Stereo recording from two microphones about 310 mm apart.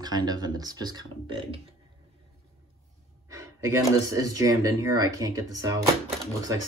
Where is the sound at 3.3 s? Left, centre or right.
Centre.